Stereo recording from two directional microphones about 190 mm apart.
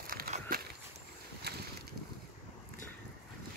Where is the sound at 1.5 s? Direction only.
55° right (ahead or behind).